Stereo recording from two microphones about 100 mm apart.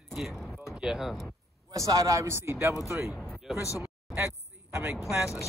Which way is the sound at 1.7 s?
35° right (ahead or behind).